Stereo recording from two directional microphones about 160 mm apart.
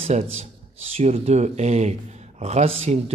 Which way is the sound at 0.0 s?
40° right (ahead or behind).